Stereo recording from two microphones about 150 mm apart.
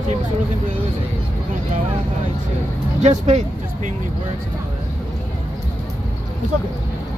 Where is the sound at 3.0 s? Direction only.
50° right (ahead or behind).